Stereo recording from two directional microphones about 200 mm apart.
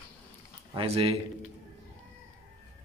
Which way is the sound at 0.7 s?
30° right (ahead or behind).